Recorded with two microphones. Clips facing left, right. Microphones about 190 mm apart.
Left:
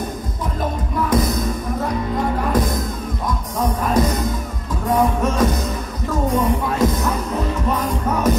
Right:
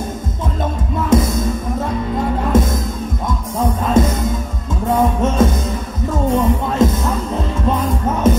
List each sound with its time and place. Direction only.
1.1 s music: 25° right (ahead or behind)
2.5 s music: 25° right (ahead or behind)